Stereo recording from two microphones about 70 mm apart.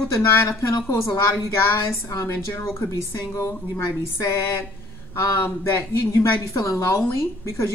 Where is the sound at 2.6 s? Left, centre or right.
Left.